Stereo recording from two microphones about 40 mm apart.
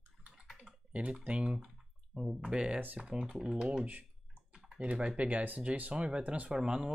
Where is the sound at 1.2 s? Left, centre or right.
Right.